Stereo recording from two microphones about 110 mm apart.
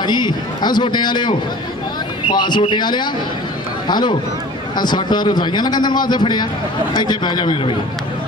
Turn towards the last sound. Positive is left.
turn(degrees=50)  # may be behind; listen again after turning